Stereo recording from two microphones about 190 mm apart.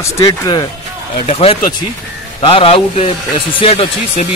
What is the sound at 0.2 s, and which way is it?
Speech, 20° left (ahead or behind).